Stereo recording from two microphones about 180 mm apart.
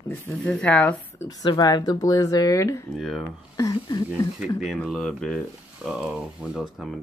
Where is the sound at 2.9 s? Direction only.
Centre (ahead or behind).